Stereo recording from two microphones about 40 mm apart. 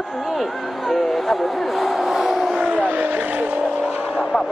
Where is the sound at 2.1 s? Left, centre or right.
Centre.